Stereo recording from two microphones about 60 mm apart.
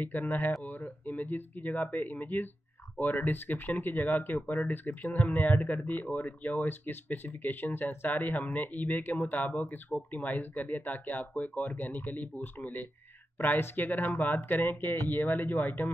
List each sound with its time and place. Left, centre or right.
0.0 s speech: left